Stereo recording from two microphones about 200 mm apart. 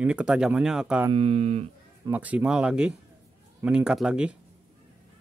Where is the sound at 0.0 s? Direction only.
5° right (ahead or behind).